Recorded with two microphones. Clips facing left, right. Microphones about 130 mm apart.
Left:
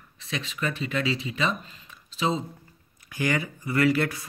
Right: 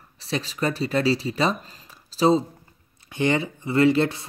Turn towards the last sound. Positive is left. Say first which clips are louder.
# right 4 dB
turn(degrees=-25)  # may be behind; listen again after turning